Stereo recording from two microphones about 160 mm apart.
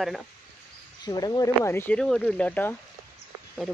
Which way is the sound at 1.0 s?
25° left (ahead or behind).